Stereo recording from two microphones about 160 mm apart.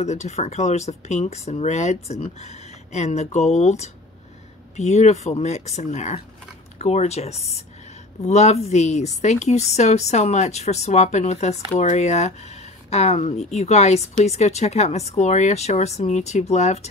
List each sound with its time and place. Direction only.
0.0 s speech: 45° left (ahead or behind)